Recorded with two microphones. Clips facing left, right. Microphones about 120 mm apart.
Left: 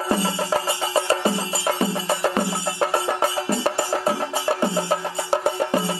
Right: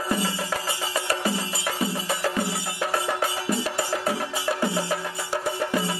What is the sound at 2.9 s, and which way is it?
Music, 30° left (ahead or behind).